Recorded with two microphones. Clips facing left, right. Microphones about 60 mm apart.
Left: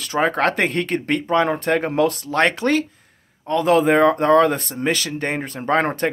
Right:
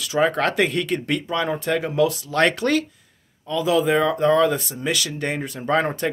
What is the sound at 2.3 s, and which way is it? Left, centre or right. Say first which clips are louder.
Speech: left 1 dB; left.